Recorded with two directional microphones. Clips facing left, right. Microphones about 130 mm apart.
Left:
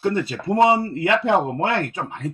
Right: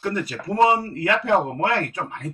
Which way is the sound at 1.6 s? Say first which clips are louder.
Left 1 dB; 25° left (ahead or behind).